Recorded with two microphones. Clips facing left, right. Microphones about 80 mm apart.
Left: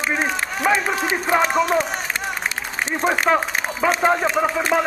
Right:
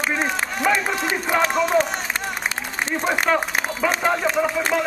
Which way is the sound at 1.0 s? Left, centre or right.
Left.